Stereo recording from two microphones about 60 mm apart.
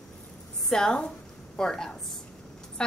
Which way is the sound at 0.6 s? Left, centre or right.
Centre.